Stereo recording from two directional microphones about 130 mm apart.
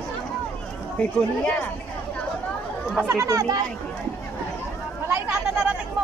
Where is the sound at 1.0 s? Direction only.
10° left (ahead or behind).